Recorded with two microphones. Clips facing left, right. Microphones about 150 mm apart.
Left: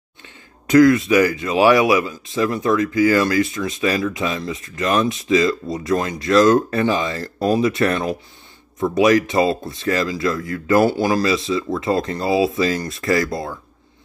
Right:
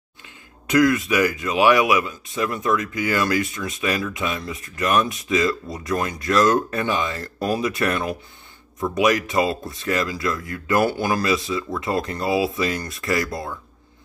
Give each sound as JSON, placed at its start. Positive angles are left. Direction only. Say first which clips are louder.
{"t": 0.7, "sound": "speech", "louder": "left 6 dB", "side_deg": 30}